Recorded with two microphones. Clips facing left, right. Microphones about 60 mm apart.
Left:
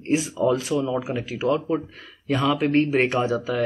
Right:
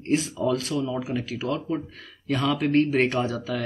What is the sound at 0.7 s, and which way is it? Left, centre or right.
Speech, left.